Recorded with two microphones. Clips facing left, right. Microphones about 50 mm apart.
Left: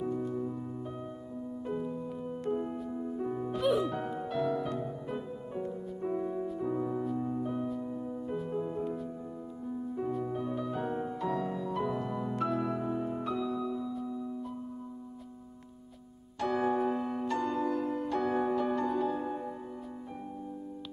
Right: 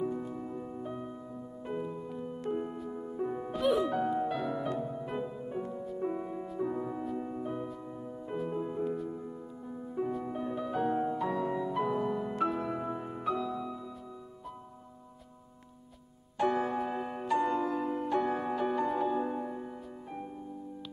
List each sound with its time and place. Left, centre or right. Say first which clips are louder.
0.0 s music: left 2 dB; centre
8.8 s music: right 2 dB; centre
9.7 s music: even; centre
16.3 s music: right 3 dB; centre
16.6 s music: left 4 dB; centre